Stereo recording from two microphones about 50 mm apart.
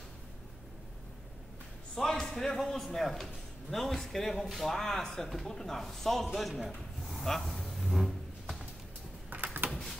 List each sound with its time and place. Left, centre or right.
2.0 s a man's voice: centre
7.1 s a sound: centre
9.3 s typing: right